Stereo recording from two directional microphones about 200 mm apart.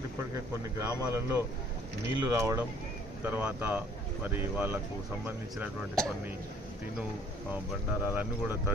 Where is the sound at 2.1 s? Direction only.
15° right (ahead or behind).